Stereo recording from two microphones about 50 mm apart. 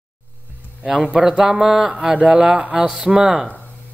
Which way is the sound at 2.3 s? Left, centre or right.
Right.